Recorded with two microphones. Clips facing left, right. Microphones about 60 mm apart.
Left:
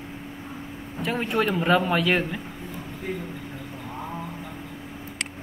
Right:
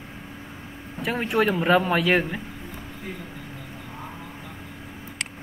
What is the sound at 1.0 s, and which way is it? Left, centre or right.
A man's voice, centre.